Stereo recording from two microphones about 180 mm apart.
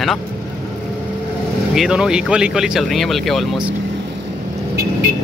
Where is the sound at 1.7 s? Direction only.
5° right (ahead or behind).